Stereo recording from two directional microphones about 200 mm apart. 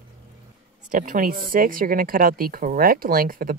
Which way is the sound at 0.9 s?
45° right (ahead or behind).